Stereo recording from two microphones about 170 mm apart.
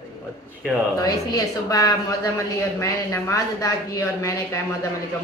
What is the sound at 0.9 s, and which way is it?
Speech, 20° left (ahead or behind).